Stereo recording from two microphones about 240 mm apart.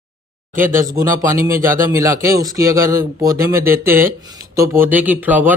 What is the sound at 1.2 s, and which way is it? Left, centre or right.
Speech, centre.